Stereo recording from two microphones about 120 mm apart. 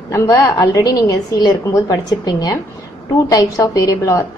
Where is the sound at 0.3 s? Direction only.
30° left (ahead or behind).